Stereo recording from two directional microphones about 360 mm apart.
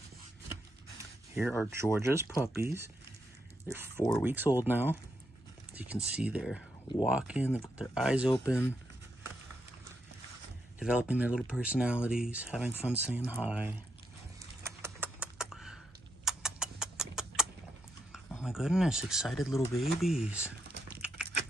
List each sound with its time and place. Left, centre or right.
1.3 s speech: centre
10.8 s speech: centre
14.6 s typing: centre
16.3 s a sound: centre
18.1 s speech: centre